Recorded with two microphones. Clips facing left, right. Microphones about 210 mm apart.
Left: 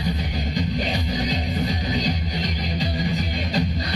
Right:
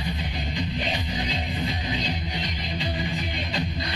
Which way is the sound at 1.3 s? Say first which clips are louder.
Left 4 dB; 40° left (ahead or behind).